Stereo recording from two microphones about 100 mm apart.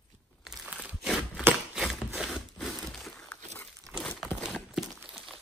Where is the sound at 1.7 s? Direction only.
5° right (ahead or behind).